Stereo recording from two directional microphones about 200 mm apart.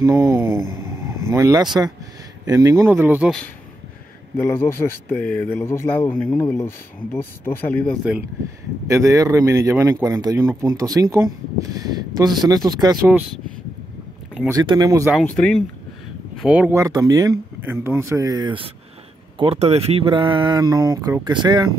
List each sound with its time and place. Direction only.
0.0 s speech: 15° right (ahead or behind)
2.8 s speech: 10° right (ahead or behind)
4.4 s speech: 10° left (ahead or behind)
8.8 s speech: 15° right (ahead or behind)
14.5 s speech: 20° right (ahead or behind)
15.2 s speech: 5° left (ahead or behind)
16.3 s speech: 5° right (ahead or behind); by 21.6 s 20° right (ahead or behind)